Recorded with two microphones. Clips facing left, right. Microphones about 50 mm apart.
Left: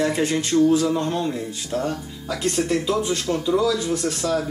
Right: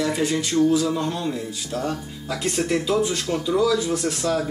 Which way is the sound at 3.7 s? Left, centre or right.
Centre.